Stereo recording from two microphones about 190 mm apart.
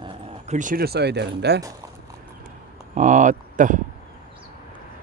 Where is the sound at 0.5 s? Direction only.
45° right (ahead or behind); by 1.6 s 60° right (ahead or behind).